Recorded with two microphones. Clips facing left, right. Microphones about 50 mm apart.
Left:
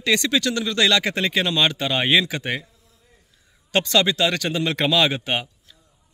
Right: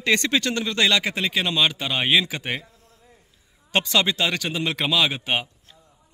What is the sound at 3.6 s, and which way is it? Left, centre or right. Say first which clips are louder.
A man's voice: left 2 dB; centre.